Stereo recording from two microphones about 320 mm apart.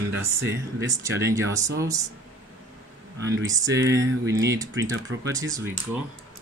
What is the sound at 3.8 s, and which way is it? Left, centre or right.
Speech, right.